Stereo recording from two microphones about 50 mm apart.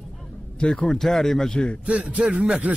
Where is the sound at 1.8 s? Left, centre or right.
Right.